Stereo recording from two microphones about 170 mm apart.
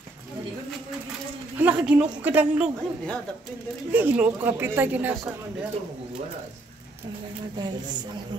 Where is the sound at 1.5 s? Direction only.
10° right (ahead or behind).